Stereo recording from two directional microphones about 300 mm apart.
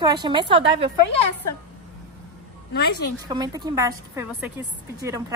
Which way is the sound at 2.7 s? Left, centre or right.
Left.